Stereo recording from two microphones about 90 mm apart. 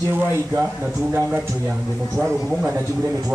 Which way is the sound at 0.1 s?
25° right (ahead or behind).